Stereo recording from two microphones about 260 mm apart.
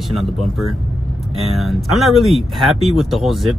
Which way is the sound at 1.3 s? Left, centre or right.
Centre.